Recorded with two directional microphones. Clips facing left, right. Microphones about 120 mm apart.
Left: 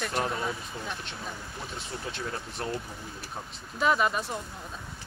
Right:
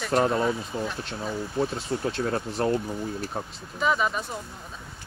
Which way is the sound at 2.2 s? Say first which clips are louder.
Right 9 dB; 55° right (ahead or behind).